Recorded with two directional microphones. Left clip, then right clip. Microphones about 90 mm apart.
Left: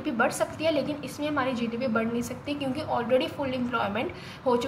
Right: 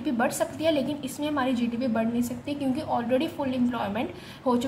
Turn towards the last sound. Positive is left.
turn(degrees=-15)  # may be behind; listen again after turning